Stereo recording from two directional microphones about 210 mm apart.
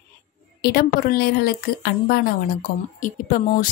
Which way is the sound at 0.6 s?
50° left (ahead or behind).